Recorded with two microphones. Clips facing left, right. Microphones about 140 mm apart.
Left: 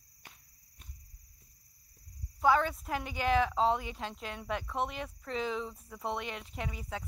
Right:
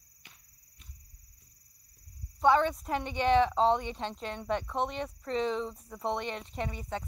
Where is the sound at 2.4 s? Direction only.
Centre (ahead or behind).